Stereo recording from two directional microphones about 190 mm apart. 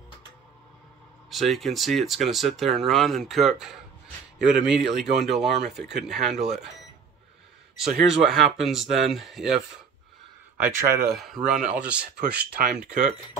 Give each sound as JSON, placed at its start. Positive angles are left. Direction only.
{"t": 1.3, "sound": "speech", "side_deg": 0}
{"t": 7.7, "sound": "speech", "side_deg": 0}
{"t": 10.6, "sound": "speech", "side_deg": -45}
{"t": 11.1, "sound": "speech", "side_deg": 0}